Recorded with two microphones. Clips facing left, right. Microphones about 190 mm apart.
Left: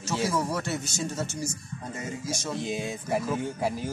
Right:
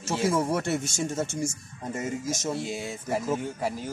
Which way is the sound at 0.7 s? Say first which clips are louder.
Right 3 dB; 50° right (ahead or behind).